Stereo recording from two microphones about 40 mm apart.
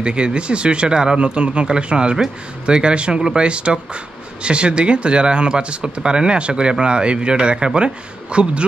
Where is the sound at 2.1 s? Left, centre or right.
Centre.